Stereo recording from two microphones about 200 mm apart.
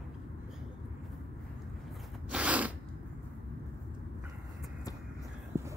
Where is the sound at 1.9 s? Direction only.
5° right (ahead or behind).